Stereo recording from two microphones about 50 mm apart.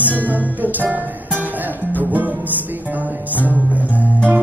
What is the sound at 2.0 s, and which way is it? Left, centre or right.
Music, right.